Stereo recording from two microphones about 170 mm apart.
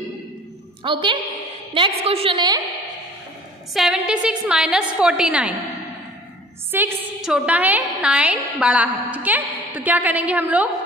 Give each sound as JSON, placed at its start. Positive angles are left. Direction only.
{"t": 0.8, "sound": "a woman's voice", "side_deg": -30}
{"t": 3.7, "sound": "a woman's voice", "side_deg": -5}
{"t": 6.7, "sound": "a woman's voice", "side_deg": -5}